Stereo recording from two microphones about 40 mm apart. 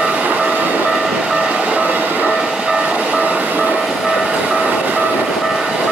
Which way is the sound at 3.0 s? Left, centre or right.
Right.